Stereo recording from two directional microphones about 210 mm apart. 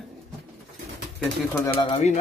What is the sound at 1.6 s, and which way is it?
Speech, 20° left (ahead or behind).